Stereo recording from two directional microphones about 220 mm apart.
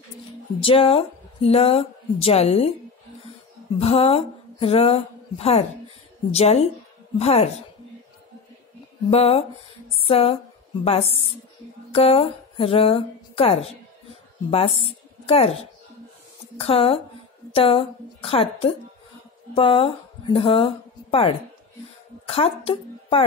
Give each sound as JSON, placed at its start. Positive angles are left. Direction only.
{"t": 0.6, "sound": "a woman's voice", "side_deg": 25}
{"t": 3.8, "sound": "a woman's voice", "side_deg": 25}
{"t": 9.1, "sound": "a woman's voice", "side_deg": 30}
{"t": 14.8, "sound": "a woman's voice", "side_deg": 25}
{"t": 16.5, "sound": "a woman's voice", "side_deg": 25}